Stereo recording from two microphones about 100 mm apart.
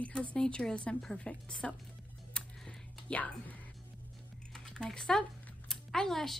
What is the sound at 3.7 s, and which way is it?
Music, 5° left (ahead or behind).